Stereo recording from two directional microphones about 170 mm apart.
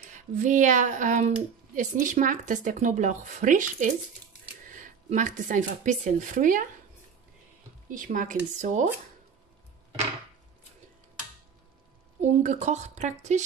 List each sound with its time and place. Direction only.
0.1 s speech: 45° right (ahead or behind)
7.9 s speech: 50° right (ahead or behind)
12.2 s speech: 45° right (ahead or behind)